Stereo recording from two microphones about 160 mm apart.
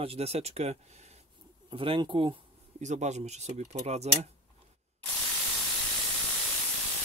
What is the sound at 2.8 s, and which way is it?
Speech, 45° right (ahead or behind).